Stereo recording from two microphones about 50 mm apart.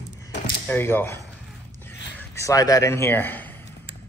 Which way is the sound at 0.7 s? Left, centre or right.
Left.